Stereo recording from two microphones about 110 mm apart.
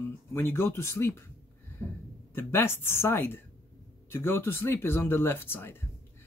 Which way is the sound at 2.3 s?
20° left (ahead or behind).